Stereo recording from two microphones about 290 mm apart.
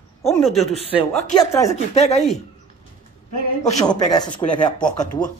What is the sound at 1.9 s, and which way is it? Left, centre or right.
Speech, left.